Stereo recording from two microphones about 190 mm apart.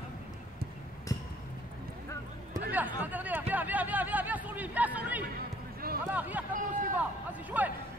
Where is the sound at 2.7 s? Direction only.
10° right (ahead or behind).